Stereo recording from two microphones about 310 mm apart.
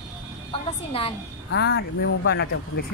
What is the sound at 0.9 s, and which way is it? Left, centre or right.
Speech, centre.